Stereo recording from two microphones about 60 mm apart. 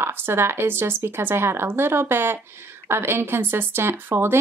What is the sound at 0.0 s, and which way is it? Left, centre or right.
Speech, right.